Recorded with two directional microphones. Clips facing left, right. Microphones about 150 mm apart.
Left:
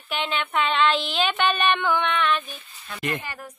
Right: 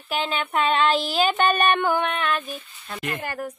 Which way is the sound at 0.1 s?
40° right (ahead or behind).